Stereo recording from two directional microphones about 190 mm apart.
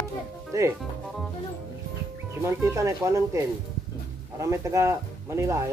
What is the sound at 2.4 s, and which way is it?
Speech, 15° right (ahead or behind).